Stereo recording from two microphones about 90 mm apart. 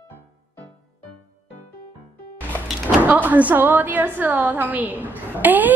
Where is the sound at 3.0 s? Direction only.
20° right (ahead or behind).